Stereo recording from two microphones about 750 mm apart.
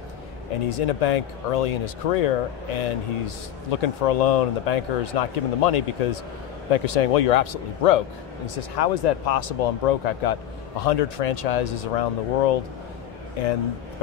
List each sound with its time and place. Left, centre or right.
0.7 s speech: left